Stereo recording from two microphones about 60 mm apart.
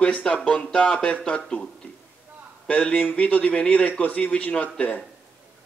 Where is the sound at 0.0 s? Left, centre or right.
Centre.